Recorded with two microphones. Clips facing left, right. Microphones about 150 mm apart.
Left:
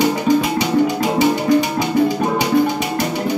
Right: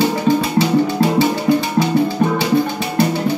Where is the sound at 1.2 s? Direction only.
15° left (ahead or behind).